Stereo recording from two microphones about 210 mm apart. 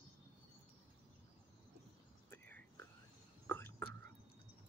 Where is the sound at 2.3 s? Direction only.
10° left (ahead or behind).